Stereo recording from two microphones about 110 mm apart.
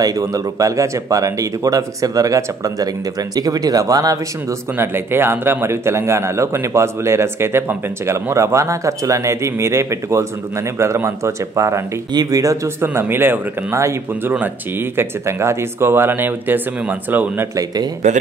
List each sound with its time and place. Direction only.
0.0 s speech: 30° right (ahead or behind)
4.7 s a man's voice: 20° right (ahead or behind)
12.8 s a man's voice: 20° right (ahead or behind)
18.0 s speech: 90° right